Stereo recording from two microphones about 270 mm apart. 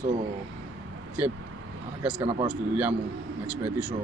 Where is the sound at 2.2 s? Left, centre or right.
Centre.